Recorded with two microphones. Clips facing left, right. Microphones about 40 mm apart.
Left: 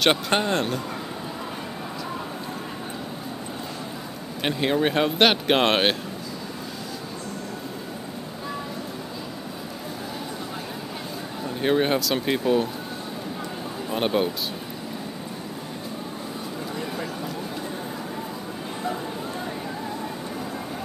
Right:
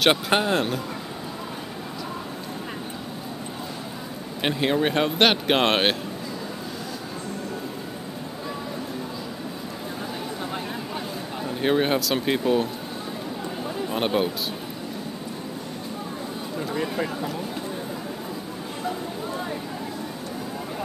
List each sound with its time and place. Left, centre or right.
0.0 s speech: centre
4.4 s speech: centre
11.4 s speech: centre
13.8 s speech: centre